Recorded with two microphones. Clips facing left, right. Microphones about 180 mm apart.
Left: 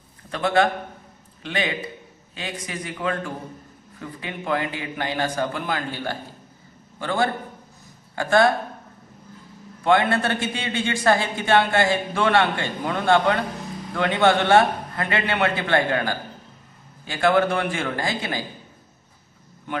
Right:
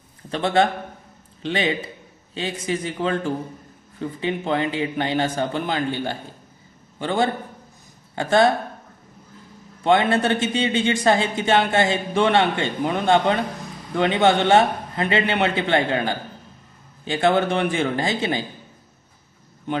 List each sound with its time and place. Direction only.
0.3 s a man's voice: 25° right (ahead or behind)
9.8 s a man's voice: 20° right (ahead or behind)